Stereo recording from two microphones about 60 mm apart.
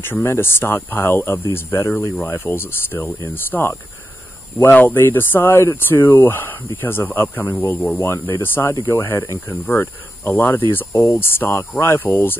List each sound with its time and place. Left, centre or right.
0.0 s speech: left
9.2 s speech: left
9.7 s speech: left
10.9 s speech: left